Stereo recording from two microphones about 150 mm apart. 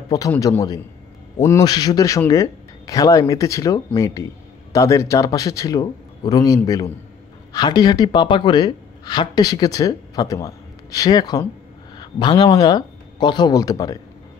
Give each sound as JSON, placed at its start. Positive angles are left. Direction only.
{"t": 0.4, "sound": "speech", "side_deg": 25}